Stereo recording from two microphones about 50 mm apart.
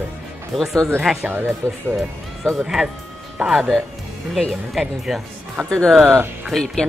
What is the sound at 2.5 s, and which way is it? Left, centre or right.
Speech, centre.